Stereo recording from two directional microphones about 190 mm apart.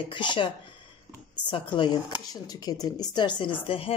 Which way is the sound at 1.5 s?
25° left (ahead or behind).